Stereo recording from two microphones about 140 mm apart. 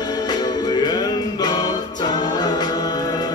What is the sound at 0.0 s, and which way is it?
Music, 30° left (ahead or behind).